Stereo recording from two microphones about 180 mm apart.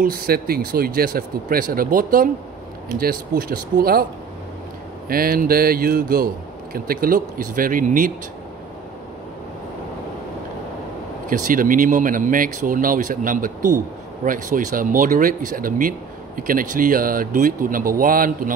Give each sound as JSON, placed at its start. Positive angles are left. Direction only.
{"t": 0.0, "sound": "speech", "side_deg": -55}
{"t": 5.0, "sound": "speech", "side_deg": -55}
{"t": 11.2, "sound": "speech", "side_deg": -50}